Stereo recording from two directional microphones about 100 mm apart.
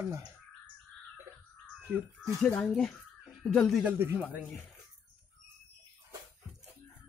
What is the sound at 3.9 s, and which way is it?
Speech, 25° right (ahead or behind).